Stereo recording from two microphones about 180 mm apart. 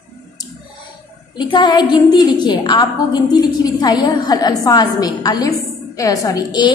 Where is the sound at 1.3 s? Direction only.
25° left (ahead or behind).